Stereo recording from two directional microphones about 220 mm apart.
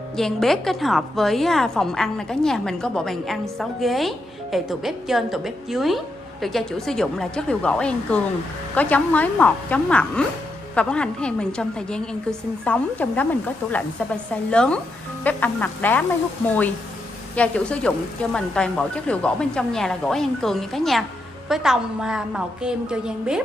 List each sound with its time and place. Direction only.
0.1 s a woman's voice: centre (ahead or behind)